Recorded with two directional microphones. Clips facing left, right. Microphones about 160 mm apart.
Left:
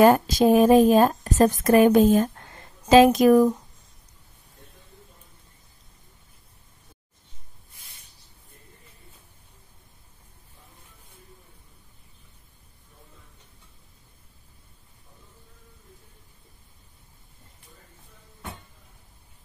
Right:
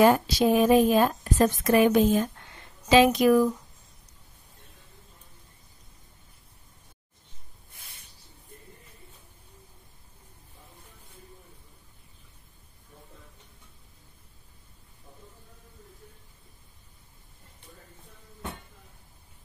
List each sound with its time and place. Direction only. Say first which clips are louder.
0.0 s speech: left 3 dB; 45° left (ahead or behind)